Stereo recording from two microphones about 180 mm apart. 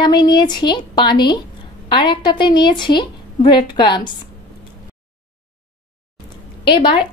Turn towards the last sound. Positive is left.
turn(degrees=25)  # may be behind; listen again after turning